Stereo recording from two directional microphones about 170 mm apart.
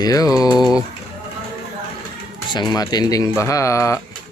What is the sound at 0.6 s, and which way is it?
Speech, 5° right (ahead or behind).